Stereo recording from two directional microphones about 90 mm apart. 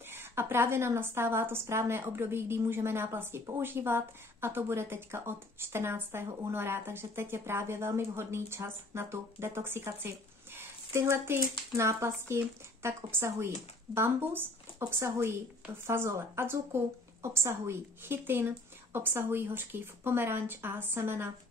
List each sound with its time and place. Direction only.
0.1 s a woman's voice: 25° right (ahead or behind)